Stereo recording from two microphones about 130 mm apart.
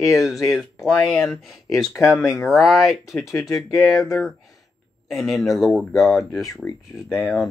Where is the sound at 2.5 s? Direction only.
Centre (ahead or behind).